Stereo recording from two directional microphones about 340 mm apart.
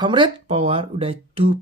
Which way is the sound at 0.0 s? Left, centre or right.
Centre.